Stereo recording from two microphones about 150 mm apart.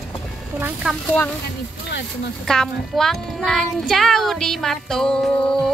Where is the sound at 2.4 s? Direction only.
5° left (ahead or behind).